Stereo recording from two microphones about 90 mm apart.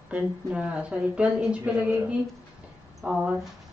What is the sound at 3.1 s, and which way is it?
Speech, 10° right (ahead or behind).